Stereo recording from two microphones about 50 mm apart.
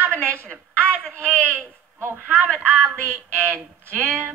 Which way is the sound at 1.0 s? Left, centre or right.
Left.